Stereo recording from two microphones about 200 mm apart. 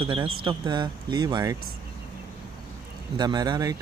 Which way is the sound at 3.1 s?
20° right (ahead or behind).